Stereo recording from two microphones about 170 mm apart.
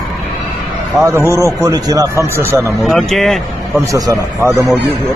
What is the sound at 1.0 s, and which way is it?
A man's voice, 15° right (ahead or behind).